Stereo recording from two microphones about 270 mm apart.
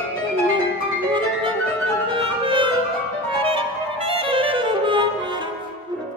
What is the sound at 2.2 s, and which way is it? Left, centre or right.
Music, centre.